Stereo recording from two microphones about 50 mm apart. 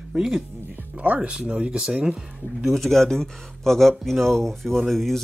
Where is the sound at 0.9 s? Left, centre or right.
Right.